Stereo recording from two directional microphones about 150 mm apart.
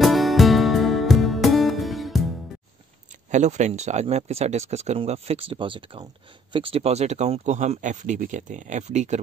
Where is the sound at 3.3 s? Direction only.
50° right (ahead or behind).